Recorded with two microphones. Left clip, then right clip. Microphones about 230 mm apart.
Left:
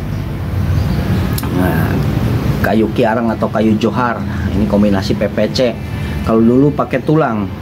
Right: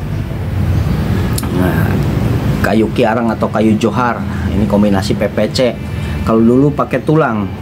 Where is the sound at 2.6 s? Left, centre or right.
Centre.